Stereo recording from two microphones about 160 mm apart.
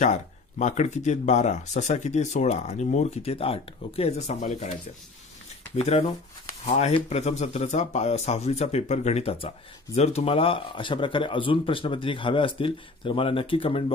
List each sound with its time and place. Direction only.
0.0 s speech: 45° left (ahead or behind)
4.4 s speech: 50° left (ahead or behind)
5.8 s a man's voice: 45° left (ahead or behind)